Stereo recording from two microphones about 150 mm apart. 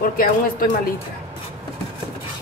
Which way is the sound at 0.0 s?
70° left (ahead or behind).